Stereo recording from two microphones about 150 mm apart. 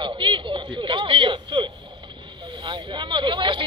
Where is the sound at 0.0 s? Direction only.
35° right (ahead or behind).